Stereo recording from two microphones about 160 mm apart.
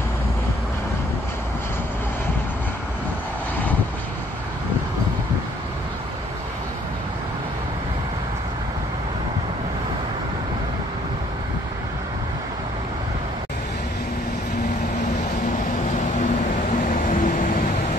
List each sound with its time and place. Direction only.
16.9 s vehicle: 55° left (ahead or behind)